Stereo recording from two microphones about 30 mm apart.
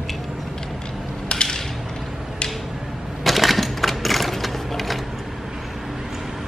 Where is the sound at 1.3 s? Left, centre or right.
Left.